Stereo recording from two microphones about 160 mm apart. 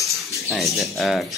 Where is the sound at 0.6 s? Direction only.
Centre (ahead or behind).